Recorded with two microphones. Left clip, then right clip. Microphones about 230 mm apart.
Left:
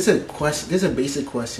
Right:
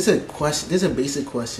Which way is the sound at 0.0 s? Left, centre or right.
Centre.